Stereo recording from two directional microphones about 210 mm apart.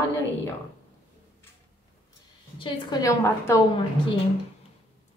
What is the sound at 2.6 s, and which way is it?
Speech, 20° left (ahead or behind).